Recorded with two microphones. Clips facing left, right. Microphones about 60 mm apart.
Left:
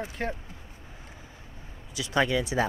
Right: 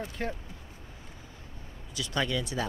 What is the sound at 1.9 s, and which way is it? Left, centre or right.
Speech, centre.